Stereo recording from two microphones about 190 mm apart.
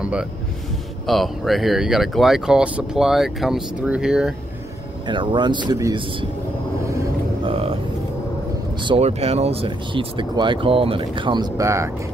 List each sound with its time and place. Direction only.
0.0 s speech: 5° right (ahead or behind)
5.0 s speech: 25° right (ahead or behind)
7.4 s music: 30° right (ahead or behind)
8.8 s speech: 30° right (ahead or behind); by 11.9 s 15° right (ahead or behind)